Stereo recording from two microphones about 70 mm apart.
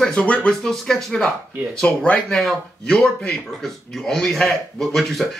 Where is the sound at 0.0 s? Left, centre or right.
Centre.